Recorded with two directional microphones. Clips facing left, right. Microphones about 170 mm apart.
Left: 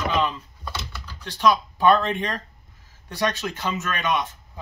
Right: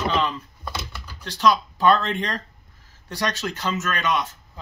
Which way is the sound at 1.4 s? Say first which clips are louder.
Even; 20° left (ahead or behind).